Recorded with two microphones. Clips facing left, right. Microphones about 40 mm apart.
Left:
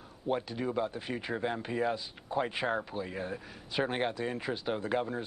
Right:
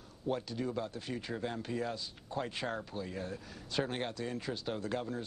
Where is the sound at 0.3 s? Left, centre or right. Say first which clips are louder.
Left 3 dB; left.